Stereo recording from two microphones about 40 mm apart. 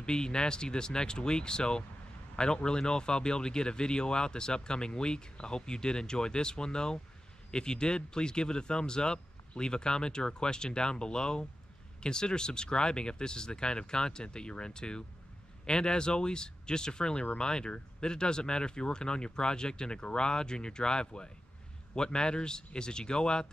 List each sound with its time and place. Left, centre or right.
0.0 s speech: left